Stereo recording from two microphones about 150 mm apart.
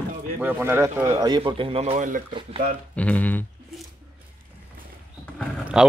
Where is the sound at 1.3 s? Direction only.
35° right (ahead or behind).